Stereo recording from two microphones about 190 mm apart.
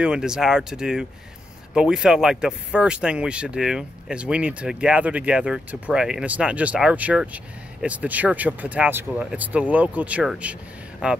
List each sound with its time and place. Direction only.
0.0 s speech: 5° right (ahead or behind)